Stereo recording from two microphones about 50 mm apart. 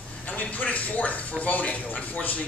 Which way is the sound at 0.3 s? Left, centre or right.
Left.